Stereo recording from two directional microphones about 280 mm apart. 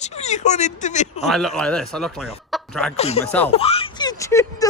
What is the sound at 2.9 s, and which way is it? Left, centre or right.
Speech, left.